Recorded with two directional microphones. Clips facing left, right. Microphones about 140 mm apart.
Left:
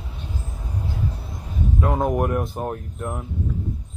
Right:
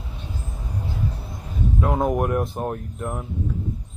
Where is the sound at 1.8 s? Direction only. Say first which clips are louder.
Even; centre (ahead or behind).